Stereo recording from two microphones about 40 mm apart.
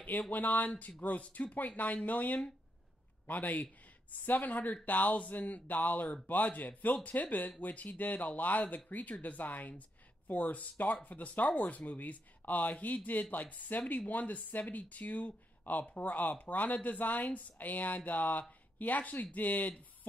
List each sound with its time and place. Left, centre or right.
0.3 s speech: left